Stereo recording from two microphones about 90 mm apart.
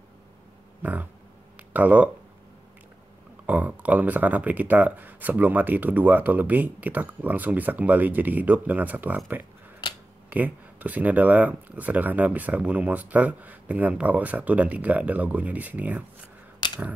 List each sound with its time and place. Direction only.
0.8 s speech: 20° right (ahead or behind)
3.4 s speech: 20° right (ahead or behind)
16.6 s a sound: 55° left (ahead or behind)